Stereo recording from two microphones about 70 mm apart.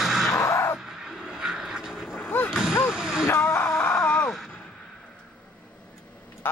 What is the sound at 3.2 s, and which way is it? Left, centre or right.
Music, left.